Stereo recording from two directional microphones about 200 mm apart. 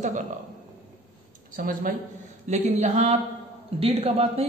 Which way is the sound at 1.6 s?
45° right (ahead or behind).